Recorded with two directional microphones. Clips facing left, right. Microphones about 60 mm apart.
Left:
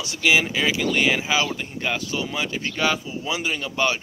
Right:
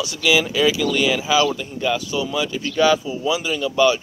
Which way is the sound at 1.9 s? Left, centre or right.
Left.